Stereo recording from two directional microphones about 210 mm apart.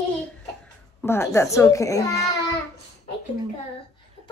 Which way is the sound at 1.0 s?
10° left (ahead or behind).